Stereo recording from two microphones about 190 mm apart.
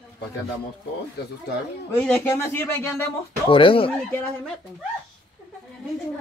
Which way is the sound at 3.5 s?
25° left (ahead or behind).